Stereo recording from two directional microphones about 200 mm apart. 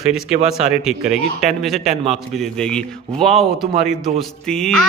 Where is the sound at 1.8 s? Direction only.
30° right (ahead or behind).